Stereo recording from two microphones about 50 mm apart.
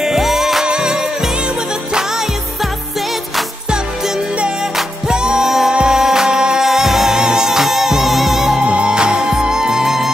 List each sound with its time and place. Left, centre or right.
0.0 s music: centre
5.0 s music: centre
8.6 s music: right